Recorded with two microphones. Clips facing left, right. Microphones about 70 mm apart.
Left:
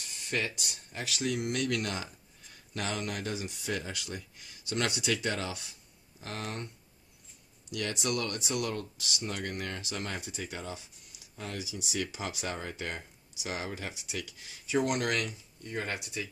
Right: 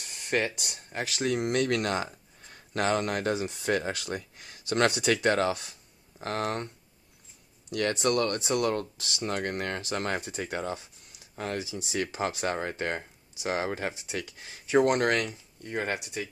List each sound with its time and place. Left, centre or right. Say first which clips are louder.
0.2 s a sound: right 6 dB; right
0.6 s speech: right 5 dB; right
7.7 s speech: right 7 dB; right